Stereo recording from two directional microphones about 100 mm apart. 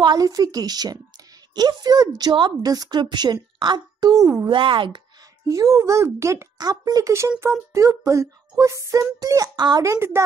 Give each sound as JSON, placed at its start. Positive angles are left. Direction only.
{"t": 0.0, "sound": "child singing", "side_deg": -40}
{"t": 1.5, "sound": "a woman's voice", "side_deg": -45}
{"t": 4.5, "sound": "speech", "side_deg": -55}
{"t": 5.5, "sound": "child singing", "side_deg": -35}
{"t": 9.8, "sound": "a woman's voice", "side_deg": -25}